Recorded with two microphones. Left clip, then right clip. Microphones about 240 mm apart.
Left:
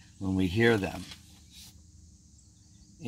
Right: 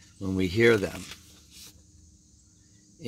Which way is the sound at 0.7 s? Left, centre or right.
Right.